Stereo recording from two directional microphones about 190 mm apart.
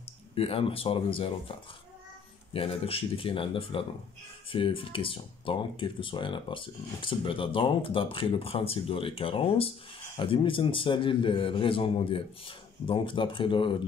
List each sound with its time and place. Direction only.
0.3 s speech: 30° left (ahead or behind)